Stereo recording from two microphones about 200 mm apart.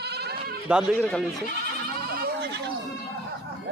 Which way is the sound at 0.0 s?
55° right (ahead or behind).